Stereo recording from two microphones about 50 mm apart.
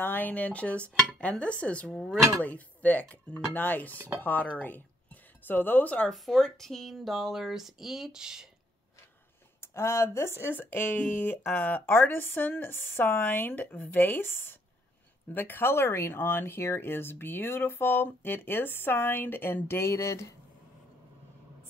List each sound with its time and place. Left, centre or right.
0.0 s speech: left
4.6 s a sound: left
6.1 s speech: centre
7.1 s speech: centre
9.6 s speech: left
10.5 s speech: left
11.9 s speech: left
19.8 s speech: left